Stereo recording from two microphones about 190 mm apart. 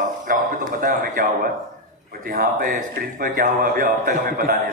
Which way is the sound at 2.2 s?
45° right (ahead or behind).